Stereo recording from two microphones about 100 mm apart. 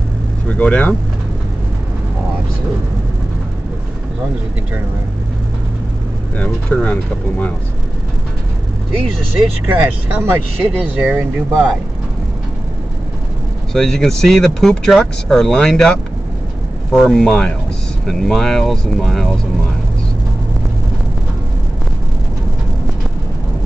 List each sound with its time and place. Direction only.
0.5 s speech: 15° left (ahead or behind)
6.3 s speech: 15° left (ahead or behind)
9.7 s speech: 15° right (ahead or behind)
13.7 s speech: 5° left (ahead or behind)